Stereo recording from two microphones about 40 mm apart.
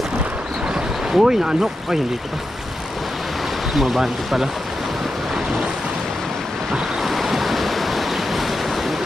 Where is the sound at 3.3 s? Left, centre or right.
Centre.